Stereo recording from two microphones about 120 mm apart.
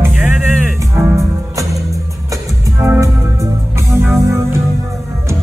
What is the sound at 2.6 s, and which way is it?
Music, 25° right (ahead or behind).